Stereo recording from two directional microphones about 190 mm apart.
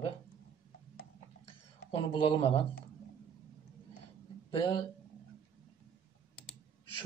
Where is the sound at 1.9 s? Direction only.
25° left (ahead or behind).